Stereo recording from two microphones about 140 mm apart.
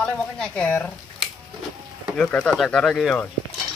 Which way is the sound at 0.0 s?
5° left (ahead or behind).